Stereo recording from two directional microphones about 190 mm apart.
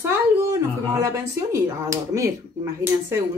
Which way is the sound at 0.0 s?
15° right (ahead or behind).